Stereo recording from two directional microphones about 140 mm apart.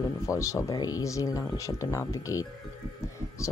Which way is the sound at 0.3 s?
20° left (ahead or behind).